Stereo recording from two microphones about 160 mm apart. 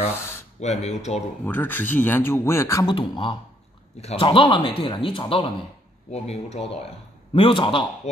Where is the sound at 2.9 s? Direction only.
30° left (ahead or behind).